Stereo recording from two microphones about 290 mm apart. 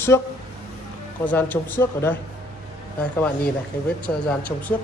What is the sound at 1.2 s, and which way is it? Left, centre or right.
Speech, centre.